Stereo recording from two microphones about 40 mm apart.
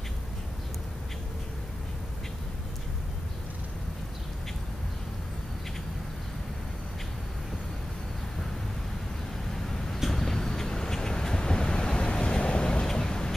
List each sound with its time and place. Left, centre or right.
10.0 s vehicle: centre